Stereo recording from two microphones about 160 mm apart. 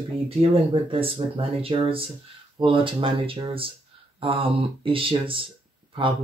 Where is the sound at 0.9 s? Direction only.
35° right (ahead or behind).